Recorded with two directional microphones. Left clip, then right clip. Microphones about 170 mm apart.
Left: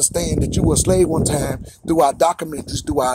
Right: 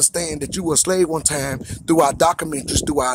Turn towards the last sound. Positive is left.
turn(degrees=-25)  # may be behind; listen again after turning